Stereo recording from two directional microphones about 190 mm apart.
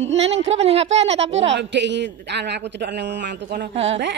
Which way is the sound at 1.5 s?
70° right (ahead or behind).